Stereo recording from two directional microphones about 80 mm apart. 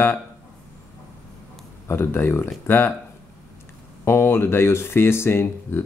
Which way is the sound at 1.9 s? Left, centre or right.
Left.